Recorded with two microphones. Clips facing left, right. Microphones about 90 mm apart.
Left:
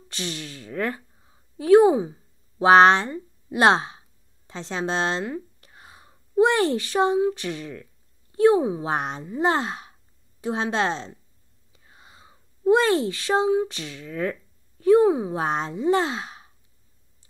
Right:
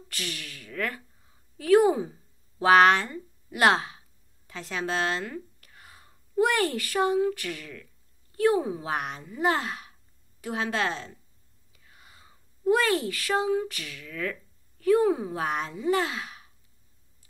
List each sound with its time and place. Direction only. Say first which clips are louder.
0.1 s a woman's voice: left 5 dB; 25° left (ahead or behind)